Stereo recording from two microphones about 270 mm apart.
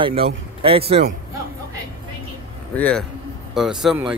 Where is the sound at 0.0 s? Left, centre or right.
Right.